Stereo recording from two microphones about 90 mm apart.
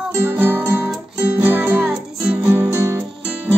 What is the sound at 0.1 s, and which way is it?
Music, 20° right (ahead or behind).